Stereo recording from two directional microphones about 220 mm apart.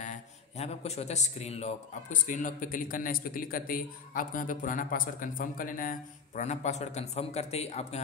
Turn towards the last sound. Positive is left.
turn(degrees=30)  # may be behind; listen again after turning